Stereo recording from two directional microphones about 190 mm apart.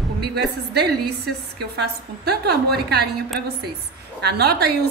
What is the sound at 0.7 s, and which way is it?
A woman's voice, 55° right (ahead or behind).